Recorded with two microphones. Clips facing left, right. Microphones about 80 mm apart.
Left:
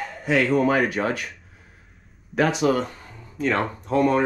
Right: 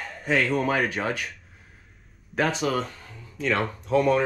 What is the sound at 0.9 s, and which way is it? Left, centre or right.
Speech, left.